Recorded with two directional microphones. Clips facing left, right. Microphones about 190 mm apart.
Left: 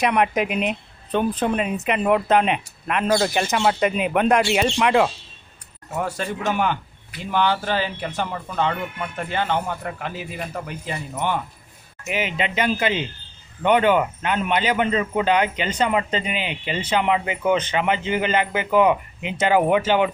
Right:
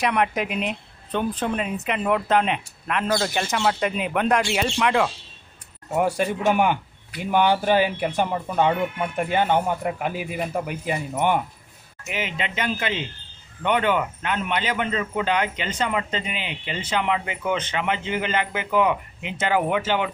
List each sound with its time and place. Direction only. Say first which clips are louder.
0.0 s a man's voice: left 3 dB; 20° left (ahead or behind)
5.9 s speech: right 4 dB; 15° right (ahead or behind)
12.1 s a man's voice: left 4 dB; 15° left (ahead or behind)